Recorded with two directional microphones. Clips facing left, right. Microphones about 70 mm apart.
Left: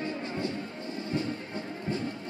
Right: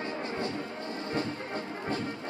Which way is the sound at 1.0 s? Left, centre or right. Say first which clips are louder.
Left 1 dB; right.